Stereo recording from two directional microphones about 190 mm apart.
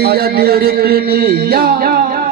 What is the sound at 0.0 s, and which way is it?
Music, 55° right (ahead or behind).